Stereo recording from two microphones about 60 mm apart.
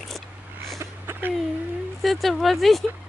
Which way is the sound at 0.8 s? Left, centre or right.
Right.